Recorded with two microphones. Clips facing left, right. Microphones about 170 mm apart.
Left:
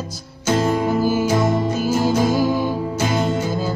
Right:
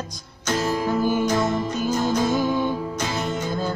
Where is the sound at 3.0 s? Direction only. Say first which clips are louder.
Left 9 dB; 30° left (ahead or behind).